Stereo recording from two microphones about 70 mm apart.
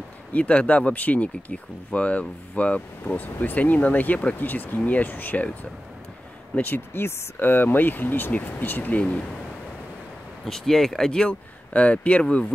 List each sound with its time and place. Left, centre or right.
0.3 s speech: left
6.5 s speech: left
10.4 s speech: centre